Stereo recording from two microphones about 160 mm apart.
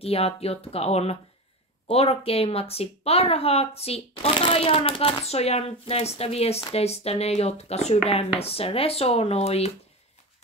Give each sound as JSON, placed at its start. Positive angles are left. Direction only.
{"t": 0.0, "sound": "a woman's voice", "side_deg": 40}